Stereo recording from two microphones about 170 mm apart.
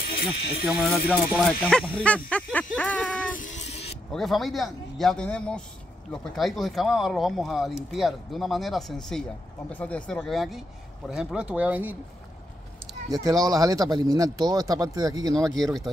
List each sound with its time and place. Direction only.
0.0 s speech: 60° left (ahead or behind)
0.7 s speech: centre (ahead or behind)
3.3 s music: 45° left (ahead or behind)
4.1 s speech: centre (ahead or behind)
13.1 s speech: 20° right (ahead or behind)
15.6 s speech: centre (ahead or behind)